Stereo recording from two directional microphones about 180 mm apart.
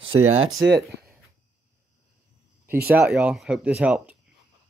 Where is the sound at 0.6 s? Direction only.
70° right (ahead or behind).